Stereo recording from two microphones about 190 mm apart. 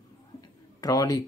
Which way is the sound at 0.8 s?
20° left (ahead or behind).